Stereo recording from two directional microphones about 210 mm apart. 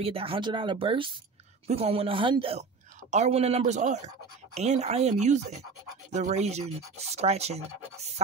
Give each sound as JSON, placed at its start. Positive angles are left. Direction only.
{"t": 0.0, "sound": "speech", "side_deg": -25}